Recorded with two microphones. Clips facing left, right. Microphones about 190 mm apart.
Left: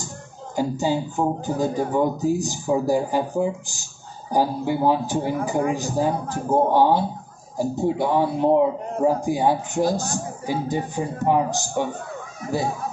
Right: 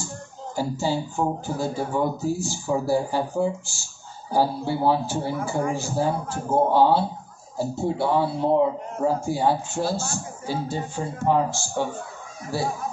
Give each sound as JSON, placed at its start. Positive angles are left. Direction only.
{"t": 0.6, "sound": "speech", "side_deg": 15}